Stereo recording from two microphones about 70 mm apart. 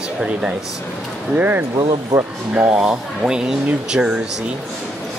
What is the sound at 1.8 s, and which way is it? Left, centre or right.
Speech, right.